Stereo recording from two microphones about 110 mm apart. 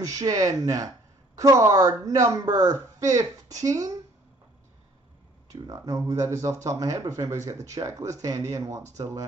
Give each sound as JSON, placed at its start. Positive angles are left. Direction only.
{"t": 0.0, "sound": "speech", "side_deg": -30}
{"t": 5.5, "sound": "speech", "side_deg": -30}